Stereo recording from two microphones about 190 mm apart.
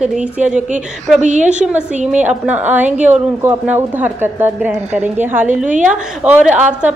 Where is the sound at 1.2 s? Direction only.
40° right (ahead or behind).